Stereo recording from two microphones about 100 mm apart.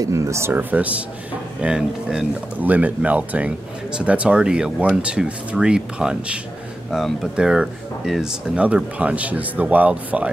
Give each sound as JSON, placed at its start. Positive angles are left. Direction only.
{"t": 0.0, "sound": "speech", "side_deg": -35}